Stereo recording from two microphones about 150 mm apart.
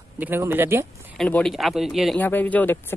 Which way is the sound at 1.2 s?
5° left (ahead or behind).